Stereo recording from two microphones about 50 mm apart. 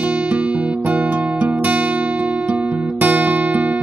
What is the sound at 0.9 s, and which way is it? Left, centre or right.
Guitar, right.